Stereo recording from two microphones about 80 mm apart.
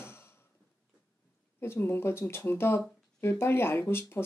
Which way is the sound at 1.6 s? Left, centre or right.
Left.